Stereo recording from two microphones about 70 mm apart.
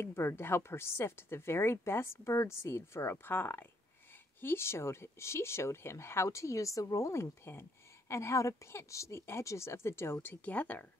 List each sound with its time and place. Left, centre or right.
0.0 s a woman's voice: left
10.2 s speech: left